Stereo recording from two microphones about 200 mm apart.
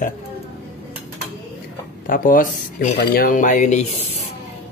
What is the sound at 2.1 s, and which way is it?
Speech, 45° left (ahead or behind).